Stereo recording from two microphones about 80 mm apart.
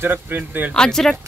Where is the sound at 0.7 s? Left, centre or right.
Centre.